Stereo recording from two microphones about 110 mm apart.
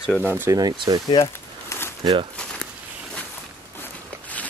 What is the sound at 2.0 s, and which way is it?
Speech, 40° right (ahead or behind).